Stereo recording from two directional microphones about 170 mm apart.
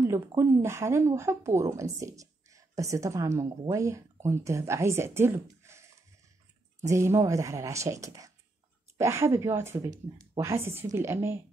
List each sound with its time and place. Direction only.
0.0 s speech: 15° right (ahead or behind)